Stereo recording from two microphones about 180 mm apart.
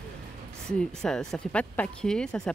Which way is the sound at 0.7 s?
5° left (ahead or behind).